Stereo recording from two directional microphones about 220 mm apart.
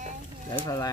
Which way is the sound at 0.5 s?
15° left (ahead or behind).